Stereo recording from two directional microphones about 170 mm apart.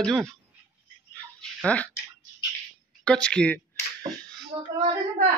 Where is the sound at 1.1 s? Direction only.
5° left (ahead or behind).